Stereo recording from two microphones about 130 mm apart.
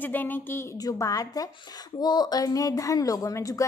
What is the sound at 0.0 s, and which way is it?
Speech, 15° left (ahead or behind).